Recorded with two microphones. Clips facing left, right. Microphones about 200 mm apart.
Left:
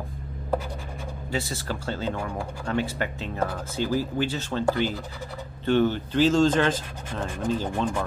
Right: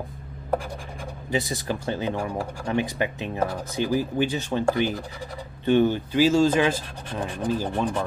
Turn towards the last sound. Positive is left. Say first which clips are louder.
# right 1 dB
turn(degrees=-10)  # may be behind; listen again after turning